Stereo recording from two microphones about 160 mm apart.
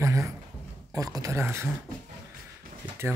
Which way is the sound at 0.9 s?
20° right (ahead or behind).